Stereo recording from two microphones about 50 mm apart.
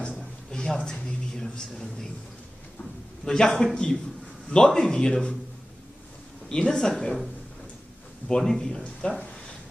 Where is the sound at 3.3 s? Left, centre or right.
Centre.